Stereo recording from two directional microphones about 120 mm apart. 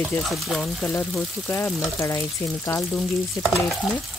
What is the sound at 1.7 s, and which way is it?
Speech, 25° left (ahead or behind).